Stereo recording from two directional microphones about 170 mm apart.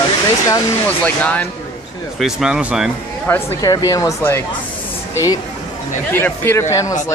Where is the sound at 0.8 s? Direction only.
10° left (ahead or behind).